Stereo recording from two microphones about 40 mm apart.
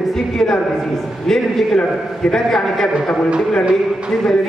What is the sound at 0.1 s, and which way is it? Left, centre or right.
A woman's voice, centre.